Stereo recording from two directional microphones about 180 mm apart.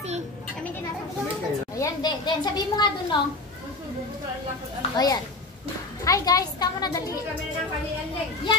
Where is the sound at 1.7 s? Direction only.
25° left (ahead or behind).